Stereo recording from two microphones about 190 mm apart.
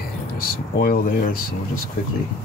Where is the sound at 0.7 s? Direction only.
50° left (ahead or behind).